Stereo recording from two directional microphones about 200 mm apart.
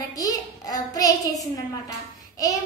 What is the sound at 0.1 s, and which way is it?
Child singing, 20° left (ahead or behind).